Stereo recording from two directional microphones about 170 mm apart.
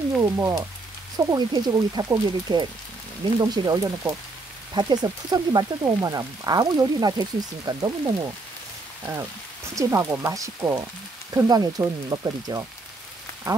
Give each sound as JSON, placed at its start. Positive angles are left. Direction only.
{"t": 0.2, "sound": "speech", "side_deg": -20}
{"t": 9.8, "sound": "speech", "side_deg": -15}